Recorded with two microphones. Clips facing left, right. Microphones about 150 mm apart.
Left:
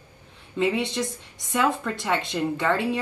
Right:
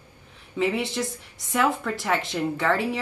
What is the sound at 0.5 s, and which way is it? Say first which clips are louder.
A woman's voice: left 1 dB; 5° right (ahead or behind).